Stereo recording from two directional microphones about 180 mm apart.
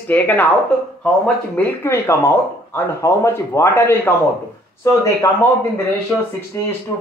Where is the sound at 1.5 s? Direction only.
15° left (ahead or behind).